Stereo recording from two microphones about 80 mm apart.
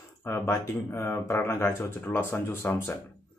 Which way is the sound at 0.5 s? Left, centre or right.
Left.